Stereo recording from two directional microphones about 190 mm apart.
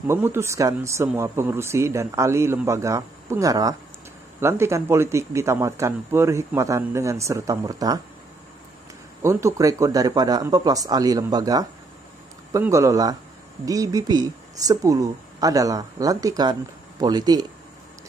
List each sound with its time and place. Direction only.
0.0 s speech: 15° right (ahead or behind)
9.2 s speech: 15° right (ahead or behind)